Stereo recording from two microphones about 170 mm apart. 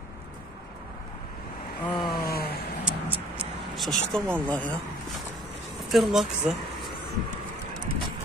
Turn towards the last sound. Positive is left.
turn(degrees=0)  # may be behind; listen again after turning